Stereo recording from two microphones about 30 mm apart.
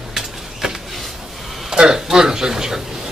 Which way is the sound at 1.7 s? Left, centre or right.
Right.